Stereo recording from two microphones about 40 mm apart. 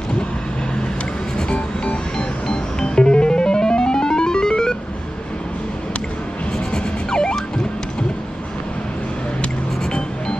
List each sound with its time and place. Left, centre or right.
1.3 s music: left
6.7 s music: centre